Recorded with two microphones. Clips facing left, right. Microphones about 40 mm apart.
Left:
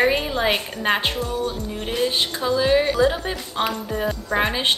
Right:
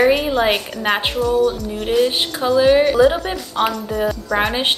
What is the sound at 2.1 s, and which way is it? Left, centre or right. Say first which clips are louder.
A woman's voice: right 5 dB; centre.